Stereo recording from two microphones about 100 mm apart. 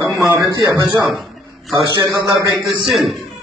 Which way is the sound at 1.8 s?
40° right (ahead or behind).